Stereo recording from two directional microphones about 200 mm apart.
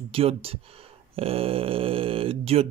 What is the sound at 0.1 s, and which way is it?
Speech, 30° right (ahead or behind).